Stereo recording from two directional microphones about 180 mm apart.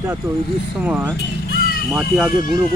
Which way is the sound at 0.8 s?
5° right (ahead or behind).